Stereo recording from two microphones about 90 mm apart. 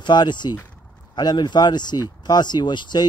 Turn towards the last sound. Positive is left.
turn(degrees=60)  # may be behind; listen again after turning